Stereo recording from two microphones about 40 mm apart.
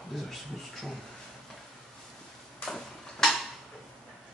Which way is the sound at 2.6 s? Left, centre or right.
Centre.